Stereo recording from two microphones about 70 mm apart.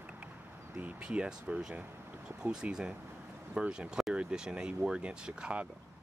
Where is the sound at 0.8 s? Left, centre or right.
Centre.